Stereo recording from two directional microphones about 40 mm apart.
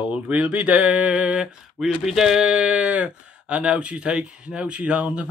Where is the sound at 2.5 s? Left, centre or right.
Right.